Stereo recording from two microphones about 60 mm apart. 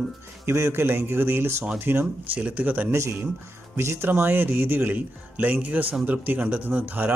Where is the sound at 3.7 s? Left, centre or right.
Right.